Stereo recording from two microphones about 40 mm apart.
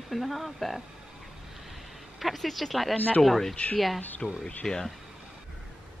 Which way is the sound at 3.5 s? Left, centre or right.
Left.